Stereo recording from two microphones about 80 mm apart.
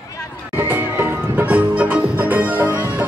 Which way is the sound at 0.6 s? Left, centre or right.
Right.